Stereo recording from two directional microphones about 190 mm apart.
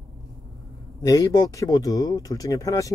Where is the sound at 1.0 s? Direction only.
20° left (ahead or behind).